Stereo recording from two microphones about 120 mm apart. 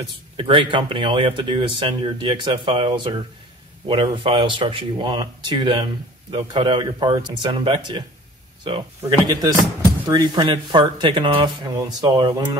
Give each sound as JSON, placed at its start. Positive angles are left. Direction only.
{"t": 0.4, "sound": "speech", "side_deg": -45}
{"t": 9.0, "sound": "speech", "side_deg": -30}